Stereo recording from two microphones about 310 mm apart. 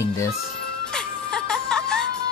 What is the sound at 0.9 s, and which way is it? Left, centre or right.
Music, centre.